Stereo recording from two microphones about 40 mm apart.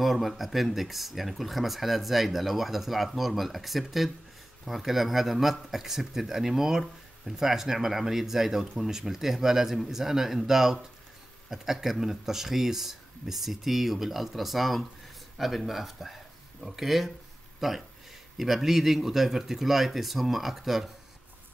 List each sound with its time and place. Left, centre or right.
0.0 s speech: centre